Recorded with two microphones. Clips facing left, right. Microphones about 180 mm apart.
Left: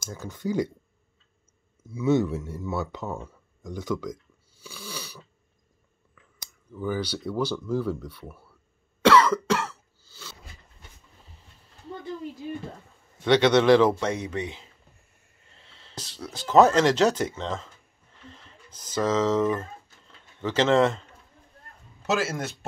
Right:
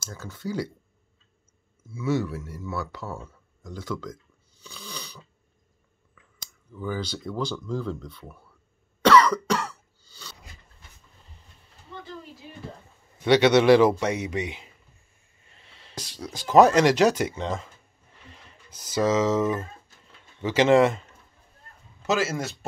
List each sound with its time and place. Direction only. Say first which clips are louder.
0.0 s speech: left 3 dB; 15° left (ahead or behind)
1.9 s speech: left 4 dB; 20° left (ahead or behind)
6.8 s speech: left 2 dB; 10° left (ahead or behind)
9.1 s cough: right 2 dB; 5° left (ahead or behind)
10.0 s a sound: left 1 dB; 5° left (ahead or behind)
13.2 s speech: right 1 dB; 10° right (ahead or behind)
18.1 s a sound: left 2 dB; 10° right (ahead or behind)
20.4 s speech: right 2 dB; 10° right (ahead or behind)
22.0 s speech: right 1 dB; centre (ahead or behind)